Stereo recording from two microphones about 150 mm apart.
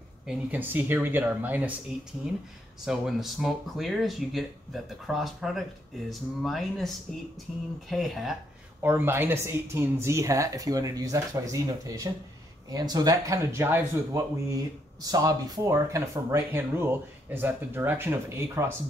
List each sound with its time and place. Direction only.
0.3 s speech: 10° right (ahead or behind)
2.8 s speech: centre (ahead or behind)
8.8 s speech: 15° right (ahead or behind)